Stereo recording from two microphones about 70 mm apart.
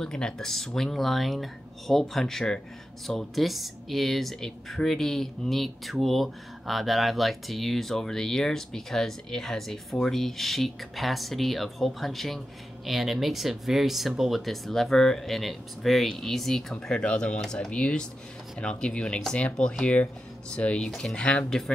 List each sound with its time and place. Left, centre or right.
0.0 s speech: centre